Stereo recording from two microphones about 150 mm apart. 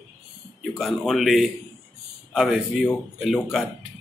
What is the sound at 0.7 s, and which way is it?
A man's voice, centre (ahead or behind).